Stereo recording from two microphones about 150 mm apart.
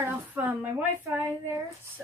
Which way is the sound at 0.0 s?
10° right (ahead or behind).